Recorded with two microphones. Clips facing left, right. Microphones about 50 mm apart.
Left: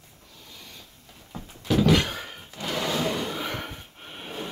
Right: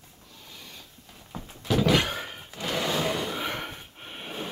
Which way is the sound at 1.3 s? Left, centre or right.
Centre.